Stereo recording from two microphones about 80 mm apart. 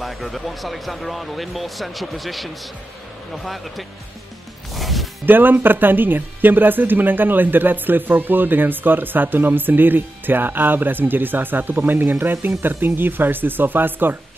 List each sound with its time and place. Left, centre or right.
0.0 s speech: centre
4.7 s music: centre
5.2 s speech: right